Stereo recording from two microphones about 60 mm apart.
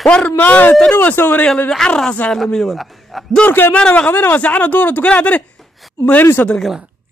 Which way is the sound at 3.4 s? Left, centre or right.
Left.